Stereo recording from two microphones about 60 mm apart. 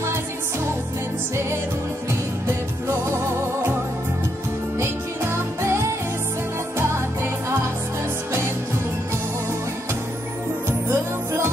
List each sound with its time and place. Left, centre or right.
4.7 s music: right